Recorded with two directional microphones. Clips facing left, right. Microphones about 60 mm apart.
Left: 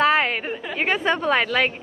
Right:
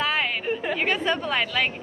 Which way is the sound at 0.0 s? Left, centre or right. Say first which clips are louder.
Left 6 dB; left.